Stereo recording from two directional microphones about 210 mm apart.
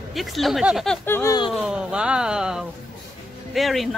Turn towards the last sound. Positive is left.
turn(degrees=0)  # may be behind; listen again after turning